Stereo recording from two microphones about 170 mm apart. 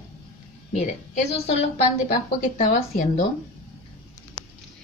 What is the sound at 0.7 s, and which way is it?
Speech, 40° left (ahead or behind).